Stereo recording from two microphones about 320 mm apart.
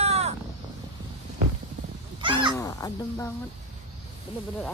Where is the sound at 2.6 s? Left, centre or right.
Centre.